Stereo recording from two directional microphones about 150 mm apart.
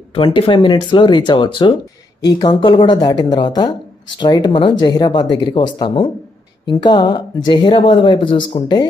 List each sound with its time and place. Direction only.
0.1 s speech: 35° left (ahead or behind)